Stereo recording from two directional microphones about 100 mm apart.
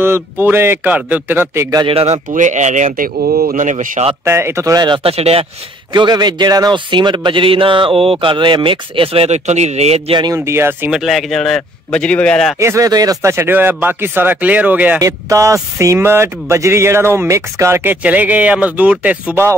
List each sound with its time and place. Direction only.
0.0 s speech: 25° right (ahead or behind)
1.9 s speech: 75° right (ahead or behind)
3.7 s speech: 90° right
4.2 s speech: 25° right (ahead or behind)
4.7 s speech: 50° right (ahead or behind)
5.0 s speech: 85° right
5.9 s speech: 45° right (ahead or behind); by 10.1 s 90° right
10.3 s speech: 25° right (ahead or behind)
10.9 s speech: centre (ahead or behind)
12.5 s speech: 30° right (ahead or behind)
15.0 s speech: 35° right (ahead or behind)
18.0 s speech: 15° right (ahead or behind)